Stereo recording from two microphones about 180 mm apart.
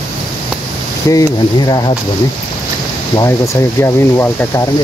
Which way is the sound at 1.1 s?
20° left (ahead or behind).